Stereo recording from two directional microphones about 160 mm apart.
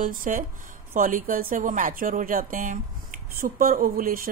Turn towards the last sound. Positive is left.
turn(degrees=-60)  # may be behind; listen again after turning